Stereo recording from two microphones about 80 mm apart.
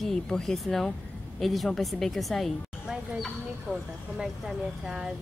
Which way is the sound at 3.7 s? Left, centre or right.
Centre.